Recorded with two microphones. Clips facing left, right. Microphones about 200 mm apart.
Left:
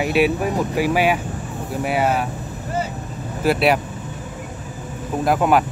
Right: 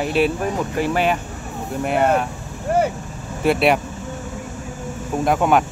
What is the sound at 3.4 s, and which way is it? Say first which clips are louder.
Speech: right 1 dB; centre (ahead or behind).